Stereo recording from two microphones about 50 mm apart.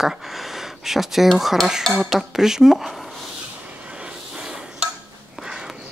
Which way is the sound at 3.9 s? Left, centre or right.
Centre.